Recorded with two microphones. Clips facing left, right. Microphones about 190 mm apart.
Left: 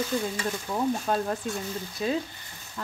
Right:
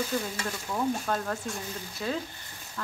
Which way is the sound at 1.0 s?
15° left (ahead or behind).